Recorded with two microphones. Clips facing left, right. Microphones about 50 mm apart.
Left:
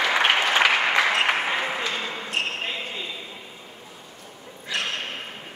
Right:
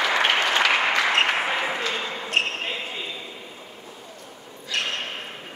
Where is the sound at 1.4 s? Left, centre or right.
Centre.